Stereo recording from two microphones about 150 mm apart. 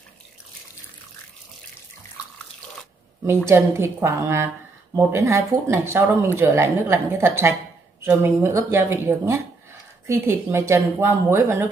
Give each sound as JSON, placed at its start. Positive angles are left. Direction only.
{"t": 3.4, "sound": "speech", "side_deg": -15}